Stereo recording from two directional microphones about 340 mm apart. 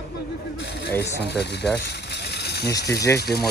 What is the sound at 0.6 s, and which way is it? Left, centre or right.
Speech, left.